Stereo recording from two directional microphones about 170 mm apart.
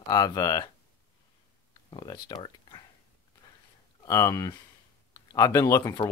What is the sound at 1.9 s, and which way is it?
Speech, 25° left (ahead or behind).